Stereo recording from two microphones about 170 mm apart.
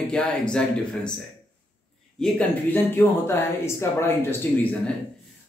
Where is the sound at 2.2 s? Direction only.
10° left (ahead or behind).